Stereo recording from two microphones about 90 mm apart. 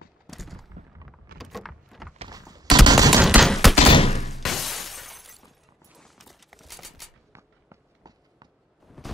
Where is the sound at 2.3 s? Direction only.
45° right (ahead or behind).